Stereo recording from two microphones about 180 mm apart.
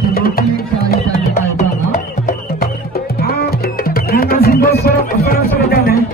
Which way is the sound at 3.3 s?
60° left (ahead or behind).